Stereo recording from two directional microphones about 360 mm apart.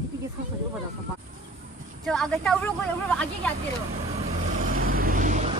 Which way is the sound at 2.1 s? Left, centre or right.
Centre.